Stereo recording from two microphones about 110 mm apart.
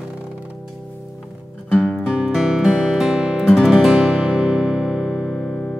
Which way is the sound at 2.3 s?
5° right (ahead or behind).